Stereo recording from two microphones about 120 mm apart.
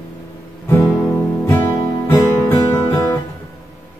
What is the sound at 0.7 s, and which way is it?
Music, 25° left (ahead or behind).